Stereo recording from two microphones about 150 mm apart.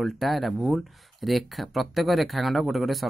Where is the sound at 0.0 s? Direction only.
Centre (ahead or behind).